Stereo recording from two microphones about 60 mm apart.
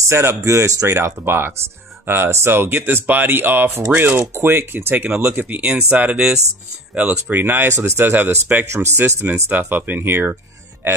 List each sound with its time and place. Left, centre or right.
0.0 s speech: right
0.9 s speech: right
7.2 s speech: right
8.0 s speech: right
8.7 s speech: right
9.5 s speech: right